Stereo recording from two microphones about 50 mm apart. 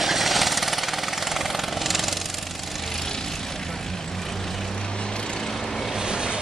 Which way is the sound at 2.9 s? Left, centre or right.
Centre.